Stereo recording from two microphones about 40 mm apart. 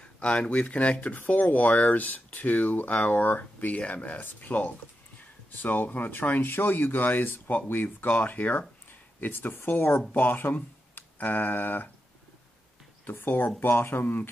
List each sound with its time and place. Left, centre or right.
0.0 s speech: left
1.1 s speech: left
9.2 s speech: left
10.1 s speech: left
13.0 s speech: left